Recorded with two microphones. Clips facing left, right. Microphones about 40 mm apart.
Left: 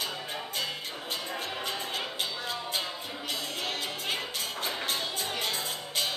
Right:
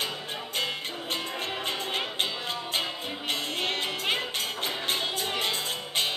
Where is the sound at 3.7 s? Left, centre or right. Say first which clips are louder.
Right 5 dB; right.